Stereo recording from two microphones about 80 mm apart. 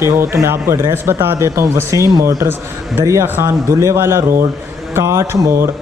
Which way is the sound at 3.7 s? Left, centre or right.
Right.